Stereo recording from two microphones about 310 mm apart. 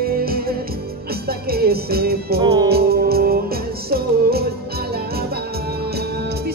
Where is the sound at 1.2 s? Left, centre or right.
Right.